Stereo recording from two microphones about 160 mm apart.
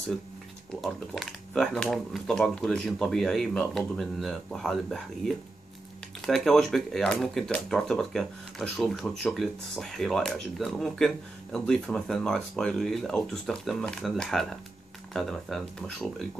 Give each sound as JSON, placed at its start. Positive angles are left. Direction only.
{"t": 0.7, "sound": "speech", "side_deg": 0}